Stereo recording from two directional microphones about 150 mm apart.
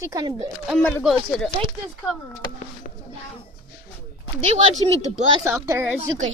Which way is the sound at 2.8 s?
70° left (ahead or behind).